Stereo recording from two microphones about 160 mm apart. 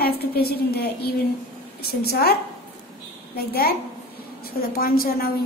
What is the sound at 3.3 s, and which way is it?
A woman's voice, 75° left (ahead or behind).